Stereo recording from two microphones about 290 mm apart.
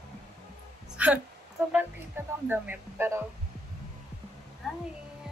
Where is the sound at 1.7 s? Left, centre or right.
Centre.